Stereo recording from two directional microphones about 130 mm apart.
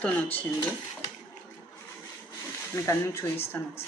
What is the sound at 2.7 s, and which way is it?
Speech, 20° left (ahead or behind).